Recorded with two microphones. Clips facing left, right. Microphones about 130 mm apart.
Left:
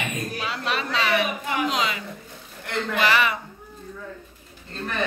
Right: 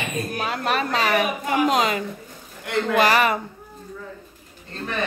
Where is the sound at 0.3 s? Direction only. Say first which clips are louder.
Right 6 dB; 50° right (ahead or behind).